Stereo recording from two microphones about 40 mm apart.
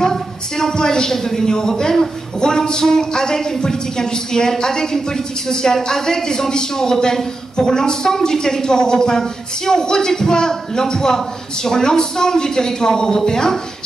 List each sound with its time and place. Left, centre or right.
0.0 s a woman's voice: centre